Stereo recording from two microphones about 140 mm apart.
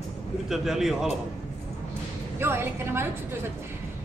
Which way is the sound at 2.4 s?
15° right (ahead or behind).